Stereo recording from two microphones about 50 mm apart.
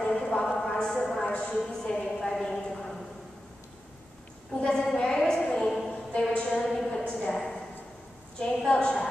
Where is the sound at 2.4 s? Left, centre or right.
Centre.